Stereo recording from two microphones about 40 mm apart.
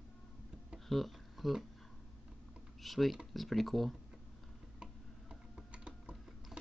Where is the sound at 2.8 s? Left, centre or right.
Centre.